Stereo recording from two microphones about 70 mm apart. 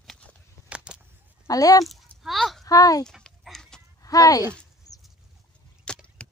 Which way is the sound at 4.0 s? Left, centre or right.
Left.